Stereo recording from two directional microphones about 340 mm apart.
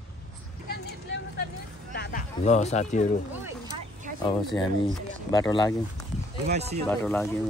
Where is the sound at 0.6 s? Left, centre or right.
Left.